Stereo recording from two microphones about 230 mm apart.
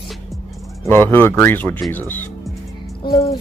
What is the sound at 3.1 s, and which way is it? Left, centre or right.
Speech, centre.